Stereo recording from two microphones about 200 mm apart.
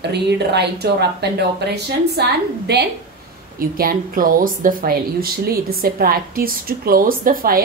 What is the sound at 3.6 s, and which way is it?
Speech, 45° right (ahead or behind).